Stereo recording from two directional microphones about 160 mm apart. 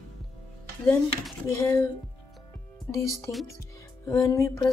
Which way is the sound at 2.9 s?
20° left (ahead or behind).